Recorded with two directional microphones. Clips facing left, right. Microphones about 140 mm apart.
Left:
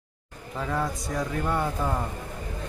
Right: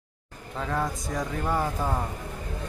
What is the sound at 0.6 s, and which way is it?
Speech, centre (ahead or behind).